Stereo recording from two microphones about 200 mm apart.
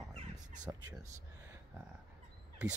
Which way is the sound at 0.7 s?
15° right (ahead or behind).